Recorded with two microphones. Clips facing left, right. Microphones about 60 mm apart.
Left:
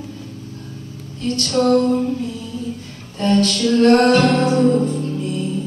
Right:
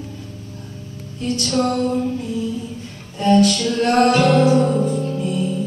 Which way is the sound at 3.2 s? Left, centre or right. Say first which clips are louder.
Right 2 dB; centre.